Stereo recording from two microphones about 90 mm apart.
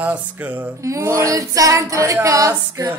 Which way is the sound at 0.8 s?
35° right (ahead or behind).